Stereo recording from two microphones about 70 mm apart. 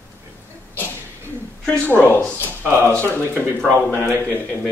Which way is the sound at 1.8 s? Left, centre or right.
Left.